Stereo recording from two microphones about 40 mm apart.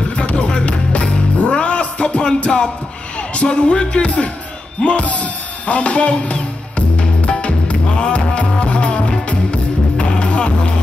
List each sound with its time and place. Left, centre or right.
0.2 s music: left
3.3 s speech: left
7.2 s music: left